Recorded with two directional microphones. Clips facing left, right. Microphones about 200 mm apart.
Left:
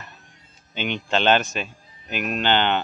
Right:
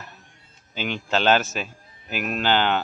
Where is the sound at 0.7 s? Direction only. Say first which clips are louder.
Left 1 dB; 5° right (ahead or behind).